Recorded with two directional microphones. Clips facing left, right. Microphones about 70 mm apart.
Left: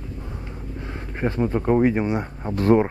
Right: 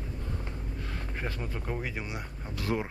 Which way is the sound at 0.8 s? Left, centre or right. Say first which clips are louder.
Left 11 dB; left.